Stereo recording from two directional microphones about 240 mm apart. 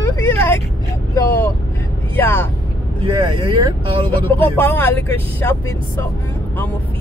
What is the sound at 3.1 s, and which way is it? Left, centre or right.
Speech, centre.